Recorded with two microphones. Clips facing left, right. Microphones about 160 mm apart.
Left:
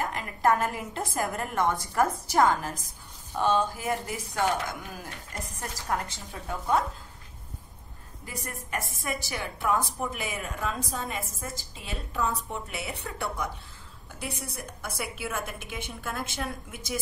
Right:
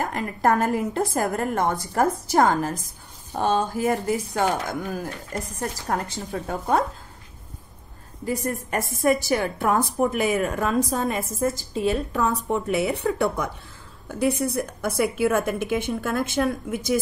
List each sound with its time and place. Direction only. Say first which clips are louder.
0.0 s a woman's voice: right 4 dB; 40° right (ahead or behind)
8.3 s speech: right 10 dB; 35° right (ahead or behind); by 16.4 s 60° right (ahead or behind)